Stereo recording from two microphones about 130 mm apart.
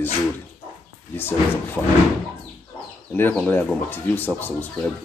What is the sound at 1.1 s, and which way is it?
Speech, 15° left (ahead or behind).